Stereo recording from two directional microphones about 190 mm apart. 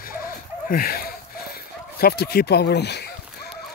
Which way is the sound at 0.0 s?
50° left (ahead or behind).